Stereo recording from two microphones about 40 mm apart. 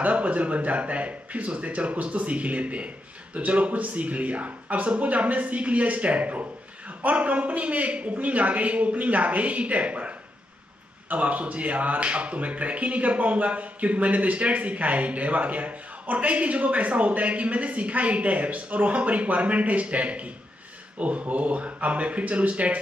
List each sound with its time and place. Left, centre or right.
0.0 s speech: right